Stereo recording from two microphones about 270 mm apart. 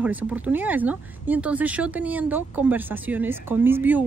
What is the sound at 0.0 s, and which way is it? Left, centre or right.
Speech, centre.